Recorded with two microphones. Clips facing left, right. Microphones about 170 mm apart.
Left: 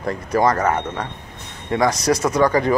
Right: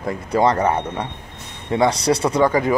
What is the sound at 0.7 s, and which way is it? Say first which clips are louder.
Speech: even; 10° right (ahead or behind).